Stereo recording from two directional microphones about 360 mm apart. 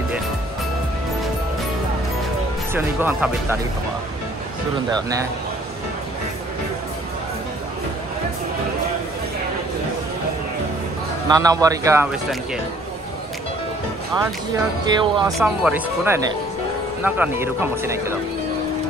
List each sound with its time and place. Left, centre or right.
2.7 s speech: centre
11.2 s a man's voice: centre
14.9 s a man's voice: centre